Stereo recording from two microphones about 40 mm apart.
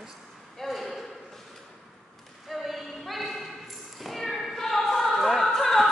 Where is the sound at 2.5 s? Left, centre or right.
Centre.